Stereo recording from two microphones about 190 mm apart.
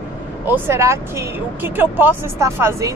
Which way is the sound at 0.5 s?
15° right (ahead or behind).